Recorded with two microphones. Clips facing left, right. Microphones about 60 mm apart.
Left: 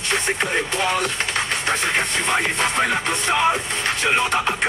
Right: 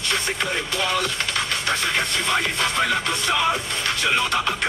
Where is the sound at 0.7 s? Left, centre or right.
Left.